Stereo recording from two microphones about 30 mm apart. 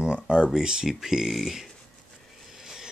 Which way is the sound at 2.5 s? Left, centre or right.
Centre.